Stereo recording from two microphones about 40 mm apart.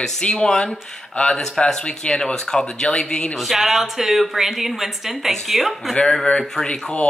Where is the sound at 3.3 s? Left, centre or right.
Centre.